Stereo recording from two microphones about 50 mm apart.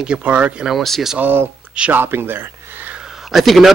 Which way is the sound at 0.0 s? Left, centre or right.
Right.